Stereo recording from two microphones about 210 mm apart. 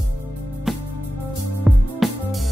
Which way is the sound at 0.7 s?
Centre (ahead or behind).